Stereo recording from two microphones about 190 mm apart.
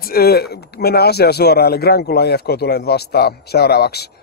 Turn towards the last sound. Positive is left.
turn(degrees=60)  # may be behind; listen again after turning